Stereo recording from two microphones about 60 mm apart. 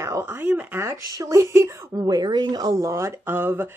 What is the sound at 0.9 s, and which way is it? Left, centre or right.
Speech, right.